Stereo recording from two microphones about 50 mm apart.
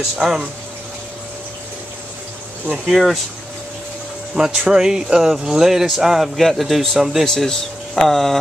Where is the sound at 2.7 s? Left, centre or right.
Centre.